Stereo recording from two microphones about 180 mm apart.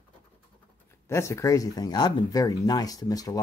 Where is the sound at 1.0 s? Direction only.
15° left (ahead or behind).